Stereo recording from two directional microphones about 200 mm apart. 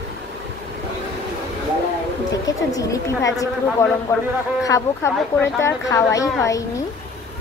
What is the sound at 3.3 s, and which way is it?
A woman's voice, 15° left (ahead or behind).